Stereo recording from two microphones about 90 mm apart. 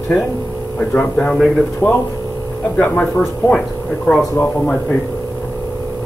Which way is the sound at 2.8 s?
20° left (ahead or behind).